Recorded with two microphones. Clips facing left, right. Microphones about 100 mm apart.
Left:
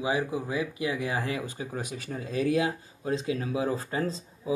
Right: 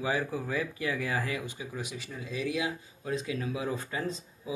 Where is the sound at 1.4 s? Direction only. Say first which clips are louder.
Left 4 dB; 40° left (ahead or behind).